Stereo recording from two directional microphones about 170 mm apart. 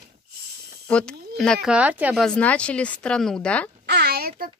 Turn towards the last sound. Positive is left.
turn(degrees=-70)  # may be behind; listen again after turning